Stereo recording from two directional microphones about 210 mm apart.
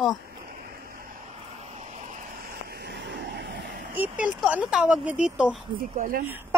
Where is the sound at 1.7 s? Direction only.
35° right (ahead or behind).